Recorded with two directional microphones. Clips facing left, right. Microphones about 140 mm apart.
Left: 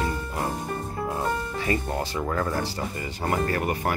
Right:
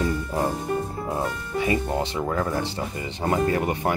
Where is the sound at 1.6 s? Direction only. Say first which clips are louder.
Right 4 dB; 20° right (ahead or behind).